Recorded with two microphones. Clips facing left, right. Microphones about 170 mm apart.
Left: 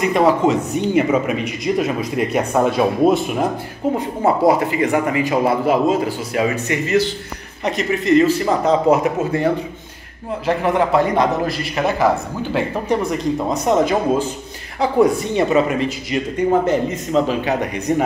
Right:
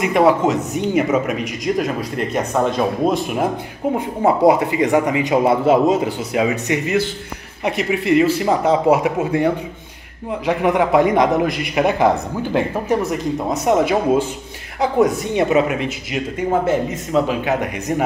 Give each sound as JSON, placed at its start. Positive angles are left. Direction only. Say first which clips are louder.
{"t": 0.0, "sound": "speech", "louder": "even", "side_deg": -5}
{"t": 3.8, "sound": "a man's voice", "louder": "even", "side_deg": -15}
{"t": 15.0, "sound": "speech", "louder": "left 1 dB", "side_deg": 0}